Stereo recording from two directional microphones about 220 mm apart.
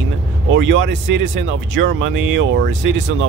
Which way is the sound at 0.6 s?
55° right (ahead or behind).